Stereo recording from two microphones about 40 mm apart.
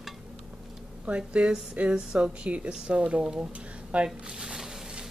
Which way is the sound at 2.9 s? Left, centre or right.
Right.